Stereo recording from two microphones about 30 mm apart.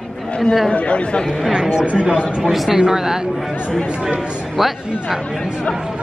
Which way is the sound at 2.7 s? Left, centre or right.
Centre.